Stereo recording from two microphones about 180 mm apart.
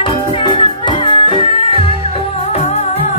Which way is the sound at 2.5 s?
35° left (ahead or behind).